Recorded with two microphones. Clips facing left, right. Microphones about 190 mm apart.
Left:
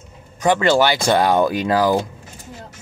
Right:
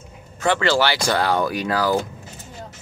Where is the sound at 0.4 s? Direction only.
15° left (ahead or behind).